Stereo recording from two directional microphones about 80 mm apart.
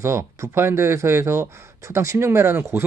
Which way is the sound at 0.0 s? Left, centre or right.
Right.